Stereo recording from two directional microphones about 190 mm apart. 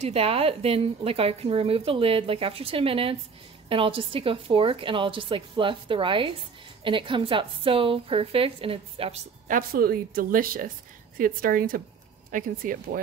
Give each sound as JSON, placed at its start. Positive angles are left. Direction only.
{"t": 0.0, "sound": "a woman's voice", "side_deg": -30}
{"t": 9.5, "sound": "a woman's voice", "side_deg": -50}